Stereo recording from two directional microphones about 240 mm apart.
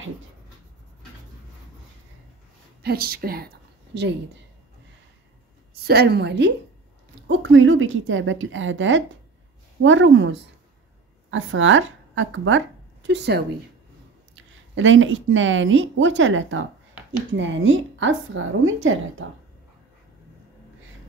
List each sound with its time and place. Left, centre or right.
2.8 s a woman's voice: right
5.9 s a woman's voice: right